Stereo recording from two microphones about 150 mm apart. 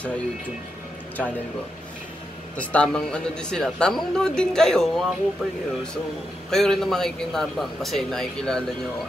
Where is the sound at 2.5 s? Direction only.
10° left (ahead or behind).